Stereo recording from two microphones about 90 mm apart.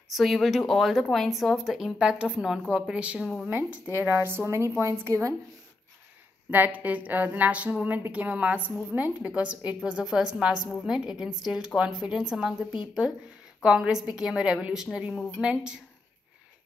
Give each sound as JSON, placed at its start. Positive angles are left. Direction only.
{"t": 0.1, "sound": "a woman's voice", "side_deg": 0}
{"t": 6.5, "sound": "a woman's voice", "side_deg": -20}